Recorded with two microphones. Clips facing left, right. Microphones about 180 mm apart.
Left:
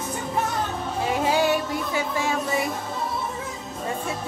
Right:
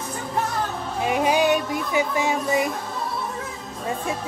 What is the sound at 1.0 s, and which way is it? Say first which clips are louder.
Music: right 2 dB; 15° right (ahead or behind).